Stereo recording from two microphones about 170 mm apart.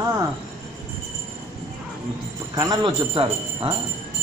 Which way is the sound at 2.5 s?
20° right (ahead or behind).